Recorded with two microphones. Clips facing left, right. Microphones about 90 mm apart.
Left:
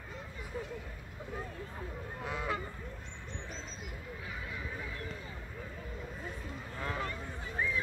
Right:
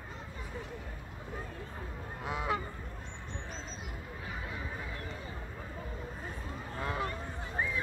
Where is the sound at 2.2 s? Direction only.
15° right (ahead or behind).